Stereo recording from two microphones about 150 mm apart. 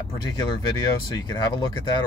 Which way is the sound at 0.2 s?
25° left (ahead or behind).